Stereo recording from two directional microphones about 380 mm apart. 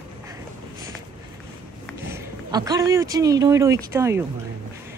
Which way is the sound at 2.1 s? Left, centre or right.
Centre.